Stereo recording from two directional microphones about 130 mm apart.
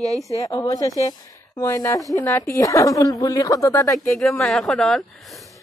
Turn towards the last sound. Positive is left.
turn(degrees=0)  # may be behind; listen again after turning